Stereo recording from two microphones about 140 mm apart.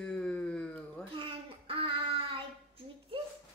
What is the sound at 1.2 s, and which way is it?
Child singing, 40° right (ahead or behind).